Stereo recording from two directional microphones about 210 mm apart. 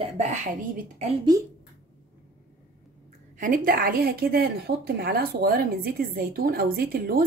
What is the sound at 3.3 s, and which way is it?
A woman's voice, 40° right (ahead or behind).